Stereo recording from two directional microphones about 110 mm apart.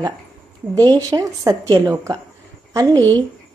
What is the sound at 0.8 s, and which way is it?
A woman's voice, 35° right (ahead or behind).